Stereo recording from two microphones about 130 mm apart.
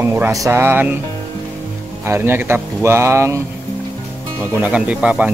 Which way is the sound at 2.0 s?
15° right (ahead or behind).